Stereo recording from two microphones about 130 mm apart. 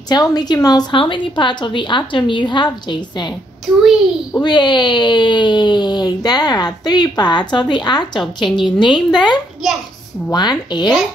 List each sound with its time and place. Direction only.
0.1 s speech: 30° left (ahead or behind)
4.4 s speech: 35° left (ahead or behind)